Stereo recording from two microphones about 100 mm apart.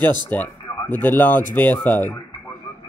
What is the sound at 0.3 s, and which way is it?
Speech, 15° left (ahead or behind).